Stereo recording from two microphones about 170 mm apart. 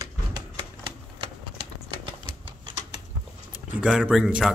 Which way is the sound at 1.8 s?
30° right (ahead or behind).